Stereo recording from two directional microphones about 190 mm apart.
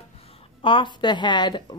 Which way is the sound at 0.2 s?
30° left (ahead or behind).